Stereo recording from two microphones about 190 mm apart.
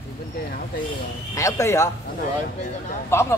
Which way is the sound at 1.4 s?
15° left (ahead or behind).